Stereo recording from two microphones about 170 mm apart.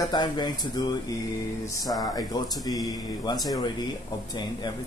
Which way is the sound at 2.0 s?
25° left (ahead or behind).